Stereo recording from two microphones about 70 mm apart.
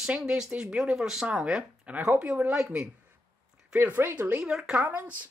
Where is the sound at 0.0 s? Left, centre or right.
Centre.